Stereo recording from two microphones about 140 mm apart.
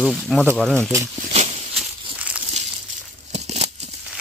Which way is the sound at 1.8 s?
10° right (ahead or behind).